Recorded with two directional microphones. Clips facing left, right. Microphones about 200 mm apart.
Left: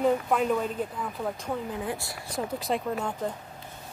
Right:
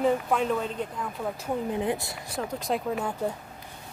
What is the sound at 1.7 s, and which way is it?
Speech, 20° right (ahead or behind).